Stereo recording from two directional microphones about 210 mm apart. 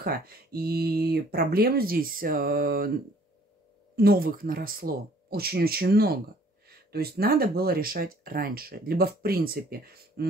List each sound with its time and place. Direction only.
0.0 s speech: 45° right (ahead or behind)
3.9 s speech: 45° right (ahead or behind)